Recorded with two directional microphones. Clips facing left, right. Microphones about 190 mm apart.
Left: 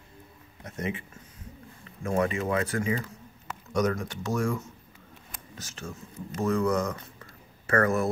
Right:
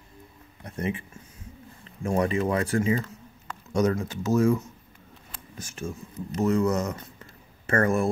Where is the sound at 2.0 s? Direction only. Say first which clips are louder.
Right 2 dB; 30° right (ahead or behind).